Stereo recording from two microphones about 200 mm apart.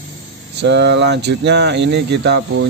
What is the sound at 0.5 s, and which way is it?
Speech, 60° right (ahead or behind).